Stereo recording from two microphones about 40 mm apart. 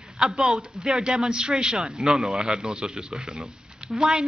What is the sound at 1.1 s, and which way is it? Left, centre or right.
A man's voice, right.